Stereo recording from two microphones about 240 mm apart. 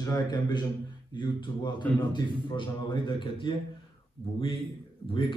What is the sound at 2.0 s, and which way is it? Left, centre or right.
A man's voice, centre.